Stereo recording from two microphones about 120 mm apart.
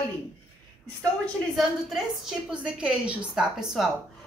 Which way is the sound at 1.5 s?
Centre (ahead or behind).